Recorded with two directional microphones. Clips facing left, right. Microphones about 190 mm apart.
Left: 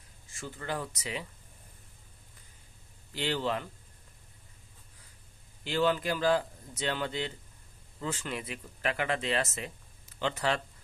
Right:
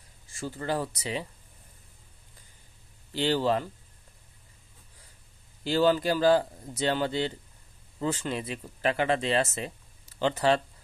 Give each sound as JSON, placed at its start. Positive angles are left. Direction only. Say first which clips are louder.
{"t": 0.4, "sound": "speech", "louder": "right 6 dB", "side_deg": -35}
{"t": 3.1, "sound": "speech", "louder": "right 6 dB", "side_deg": -35}
{"t": 5.6, "sound": "speech", "louder": "right 5 dB", "side_deg": -35}